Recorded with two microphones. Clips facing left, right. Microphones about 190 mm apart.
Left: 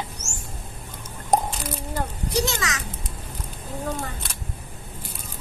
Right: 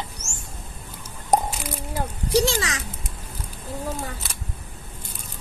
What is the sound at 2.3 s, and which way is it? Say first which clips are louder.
Speech: right 5 dB; 30° right (ahead or behind).